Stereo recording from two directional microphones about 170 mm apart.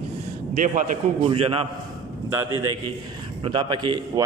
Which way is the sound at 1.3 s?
35° right (ahead or behind).